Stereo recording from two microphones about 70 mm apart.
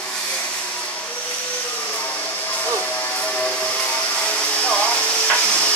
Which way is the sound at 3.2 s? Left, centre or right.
Centre.